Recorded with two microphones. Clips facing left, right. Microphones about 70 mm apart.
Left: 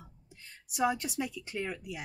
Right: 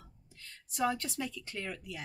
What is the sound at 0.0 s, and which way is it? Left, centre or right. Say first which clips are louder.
A woman's voice: left 2 dB; centre.